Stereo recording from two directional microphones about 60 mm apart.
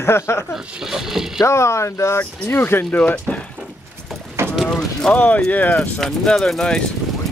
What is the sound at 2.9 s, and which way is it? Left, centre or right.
Speech, left.